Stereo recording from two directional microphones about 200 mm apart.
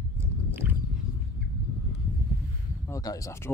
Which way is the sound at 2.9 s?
15° left (ahead or behind).